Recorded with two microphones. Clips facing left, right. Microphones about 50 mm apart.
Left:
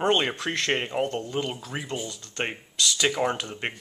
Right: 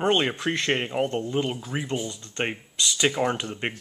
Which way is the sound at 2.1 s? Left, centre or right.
Right.